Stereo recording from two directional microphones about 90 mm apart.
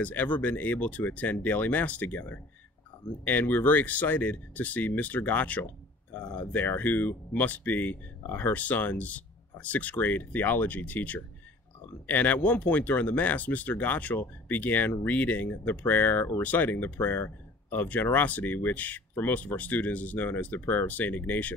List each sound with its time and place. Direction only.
0.0 s speech: 20° left (ahead or behind)